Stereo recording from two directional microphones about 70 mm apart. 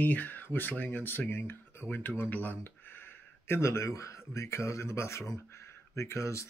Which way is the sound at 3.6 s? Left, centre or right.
Left.